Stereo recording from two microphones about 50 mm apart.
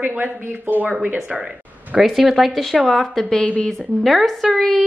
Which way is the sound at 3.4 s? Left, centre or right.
Left.